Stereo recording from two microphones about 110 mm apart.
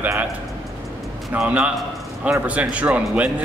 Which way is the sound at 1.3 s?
10° right (ahead or behind).